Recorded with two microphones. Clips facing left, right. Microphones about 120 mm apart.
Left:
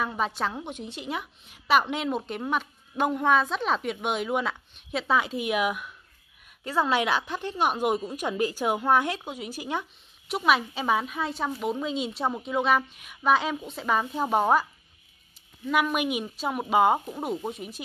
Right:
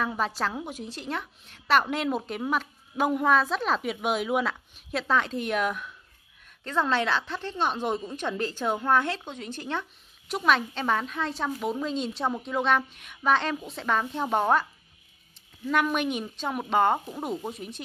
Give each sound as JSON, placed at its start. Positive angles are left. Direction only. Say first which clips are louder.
{"t": 0.0, "sound": "a woman's voice", "louder": "even", "side_deg": 0}
{"t": 15.7, "sound": "a woman's voice", "louder": "even", "side_deg": 5}